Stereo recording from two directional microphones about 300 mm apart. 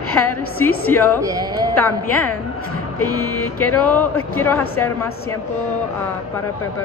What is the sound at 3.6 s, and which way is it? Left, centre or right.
Speech, left.